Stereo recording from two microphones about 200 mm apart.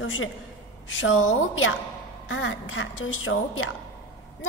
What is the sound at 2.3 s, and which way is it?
A woman's voice, 75° left (ahead or behind).